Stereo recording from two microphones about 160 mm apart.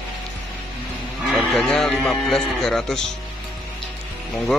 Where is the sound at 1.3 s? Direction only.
Centre (ahead or behind).